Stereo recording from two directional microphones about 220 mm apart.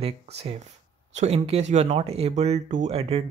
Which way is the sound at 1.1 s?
30° right (ahead or behind).